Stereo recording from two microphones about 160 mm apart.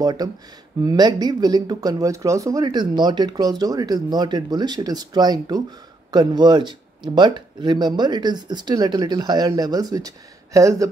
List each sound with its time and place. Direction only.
0.0 s speech: 25° right (ahead or behind)